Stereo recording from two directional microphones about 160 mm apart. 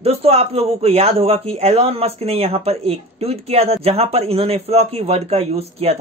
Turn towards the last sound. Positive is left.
turn(degrees=-40)  # may be behind; listen again after turning